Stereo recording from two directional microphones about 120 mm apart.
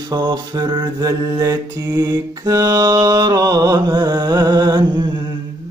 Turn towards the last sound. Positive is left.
turn(degrees=-40)  # may be behind; listen again after turning